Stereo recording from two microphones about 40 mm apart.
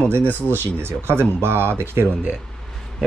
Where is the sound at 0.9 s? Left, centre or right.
Right.